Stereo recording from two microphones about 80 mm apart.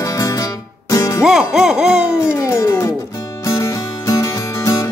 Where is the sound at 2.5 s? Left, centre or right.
Left.